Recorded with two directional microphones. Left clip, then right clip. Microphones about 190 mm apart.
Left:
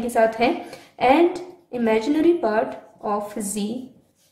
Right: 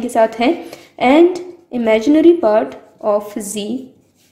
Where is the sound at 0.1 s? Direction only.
25° right (ahead or behind).